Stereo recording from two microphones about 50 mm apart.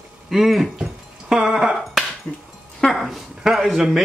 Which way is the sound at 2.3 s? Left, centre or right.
Left.